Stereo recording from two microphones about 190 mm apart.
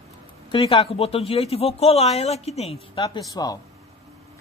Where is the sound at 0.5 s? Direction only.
30° left (ahead or behind).